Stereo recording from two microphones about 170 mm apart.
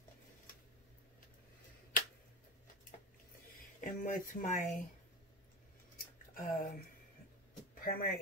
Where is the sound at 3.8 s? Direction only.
50° left (ahead or behind).